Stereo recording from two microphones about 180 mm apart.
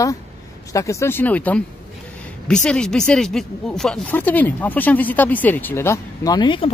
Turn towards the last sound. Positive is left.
turn(degrees=25)  # may be behind; listen again after turning